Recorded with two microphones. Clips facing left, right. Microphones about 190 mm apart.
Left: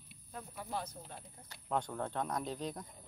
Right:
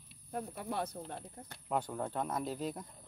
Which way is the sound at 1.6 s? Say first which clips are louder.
Right 1 dB; 10° right (ahead or behind).